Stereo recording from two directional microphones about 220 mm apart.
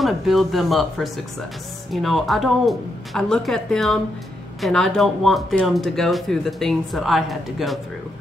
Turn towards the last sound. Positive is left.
turn(degrees=0)  # may be behind; listen again after turning